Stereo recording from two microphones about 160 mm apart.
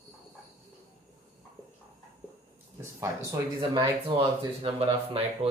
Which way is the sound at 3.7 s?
30° right (ahead or behind).